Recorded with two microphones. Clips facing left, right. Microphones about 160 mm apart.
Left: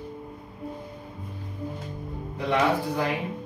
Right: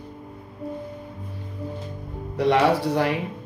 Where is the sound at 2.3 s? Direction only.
80° right.